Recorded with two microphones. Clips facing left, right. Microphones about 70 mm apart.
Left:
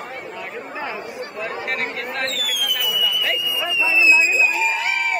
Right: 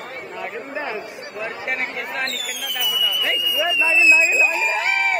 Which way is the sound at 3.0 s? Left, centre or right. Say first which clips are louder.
Even; right.